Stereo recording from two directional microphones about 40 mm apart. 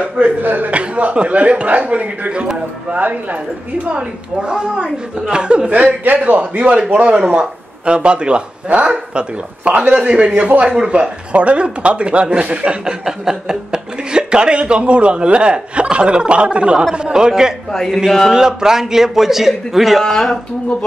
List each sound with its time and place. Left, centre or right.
0.2 s a woman's voice: right
0.7 s a woman's voice: right
3.9 s speech: right
6.1 s speech: right
7.2 s speech: right
13.0 s a man's voice: centre
20.0 s speech: centre